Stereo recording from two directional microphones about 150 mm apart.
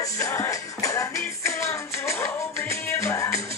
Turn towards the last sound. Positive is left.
turn(degrees=20)  # may be behind; listen again after turning